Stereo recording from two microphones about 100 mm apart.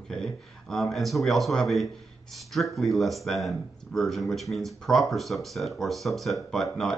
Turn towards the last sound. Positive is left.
turn(degrees=5)  # may be behind; listen again after turning